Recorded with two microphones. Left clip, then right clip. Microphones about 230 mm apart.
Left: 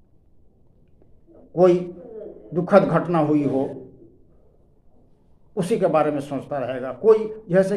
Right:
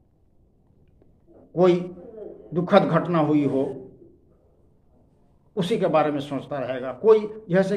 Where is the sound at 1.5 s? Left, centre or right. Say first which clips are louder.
Left 3 dB; centre.